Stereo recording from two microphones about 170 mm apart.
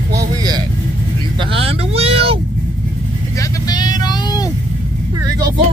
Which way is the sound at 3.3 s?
20° left (ahead or behind).